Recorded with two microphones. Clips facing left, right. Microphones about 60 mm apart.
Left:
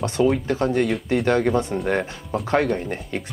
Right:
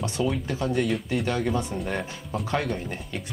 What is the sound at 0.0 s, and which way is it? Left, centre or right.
Speech, left.